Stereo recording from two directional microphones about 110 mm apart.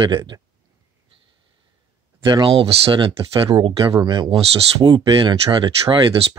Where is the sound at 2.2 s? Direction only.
45° right (ahead or behind).